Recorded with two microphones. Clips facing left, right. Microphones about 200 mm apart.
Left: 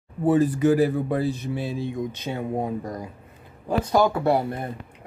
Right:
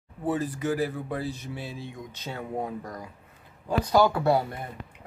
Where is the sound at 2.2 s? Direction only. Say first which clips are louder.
Left 3 dB; 20° left (ahead or behind).